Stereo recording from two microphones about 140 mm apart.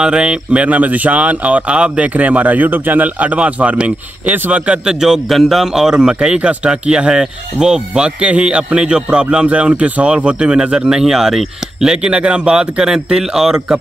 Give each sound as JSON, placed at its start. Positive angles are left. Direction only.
{"t": 0.0, "sound": "speech", "side_deg": -5}